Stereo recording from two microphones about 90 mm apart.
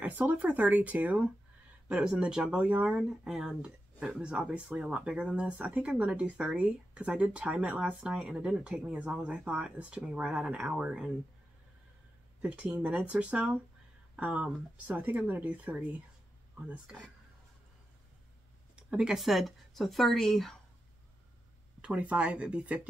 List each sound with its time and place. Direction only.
0.0 s speech: 20° right (ahead or behind)
12.4 s speech: 20° right (ahead or behind)
18.8 s speech: 10° right (ahead or behind)
21.8 s speech: 15° right (ahead or behind)